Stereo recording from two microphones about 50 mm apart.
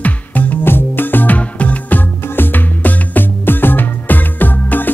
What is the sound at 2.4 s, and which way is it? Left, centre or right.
Music, left.